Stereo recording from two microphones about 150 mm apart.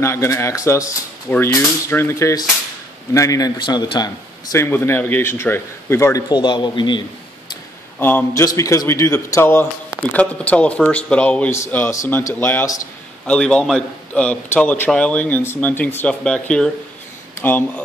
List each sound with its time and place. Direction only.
0.0 s a man's voice: 20° left (ahead or behind)
4.6 s a man's voice: 15° left (ahead or behind); by 7.0 s 30° left (ahead or behind)
8.0 s a man's voice: 15° left (ahead or behind)